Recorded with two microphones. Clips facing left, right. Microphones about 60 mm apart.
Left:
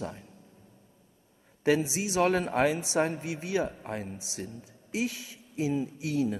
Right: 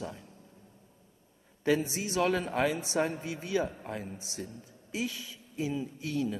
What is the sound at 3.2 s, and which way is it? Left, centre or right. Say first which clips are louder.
Speech: left 1 dB; left.